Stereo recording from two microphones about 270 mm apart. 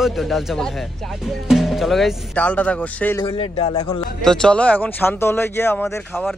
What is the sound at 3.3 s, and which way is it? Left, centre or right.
Speech, left.